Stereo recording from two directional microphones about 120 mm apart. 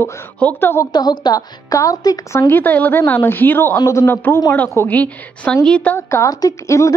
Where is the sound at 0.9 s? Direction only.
35° left (ahead or behind); by 5.9 s 10° left (ahead or behind).